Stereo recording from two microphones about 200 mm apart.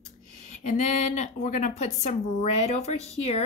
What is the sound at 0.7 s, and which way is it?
A woman's voice, 35° left (ahead or behind).